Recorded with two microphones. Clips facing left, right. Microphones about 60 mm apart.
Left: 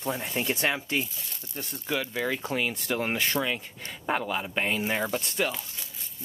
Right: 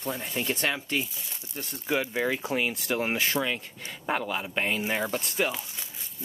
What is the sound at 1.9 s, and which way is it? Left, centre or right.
Speech, centre.